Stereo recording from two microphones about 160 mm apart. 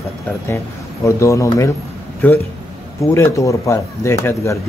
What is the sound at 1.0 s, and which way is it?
Speech, 20° left (ahead or behind).